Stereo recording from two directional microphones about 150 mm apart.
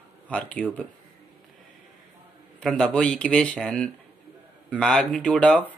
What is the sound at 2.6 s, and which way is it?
Speech, 5° left (ahead or behind).